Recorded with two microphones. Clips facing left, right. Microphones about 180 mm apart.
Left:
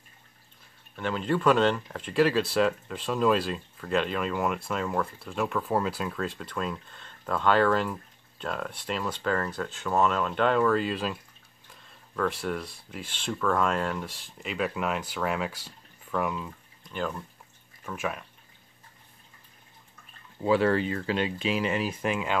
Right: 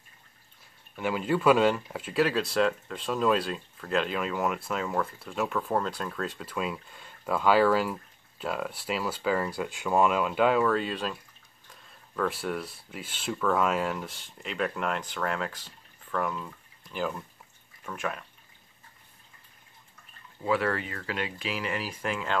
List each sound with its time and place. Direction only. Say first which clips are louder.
0.9 s speech: even; 10° right (ahead or behind); by 16.4 s 10° left (ahead or behind)
16.8 s speech: even; 5° right (ahead or behind)
20.4 s speech: left 5 dB; 25° left (ahead or behind)